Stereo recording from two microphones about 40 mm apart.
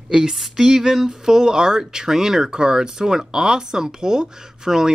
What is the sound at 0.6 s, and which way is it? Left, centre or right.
Speech, centre.